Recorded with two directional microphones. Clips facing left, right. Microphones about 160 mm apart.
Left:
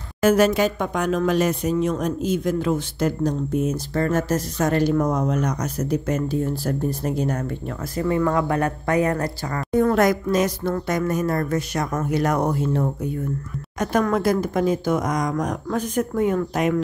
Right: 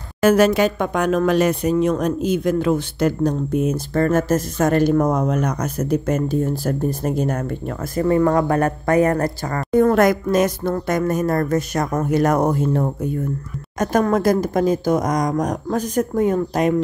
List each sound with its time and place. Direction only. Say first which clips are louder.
0.2 s speech: right 3 dB; 70° right (ahead or behind); by 12.9 s 45° right (ahead or behind)
14.1 s speech: right 3 dB; 45° right (ahead or behind)